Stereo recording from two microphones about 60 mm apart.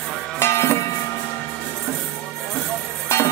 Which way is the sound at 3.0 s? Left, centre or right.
Left.